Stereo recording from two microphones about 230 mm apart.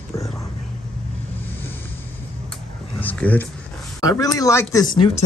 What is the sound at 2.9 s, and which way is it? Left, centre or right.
Speech, centre.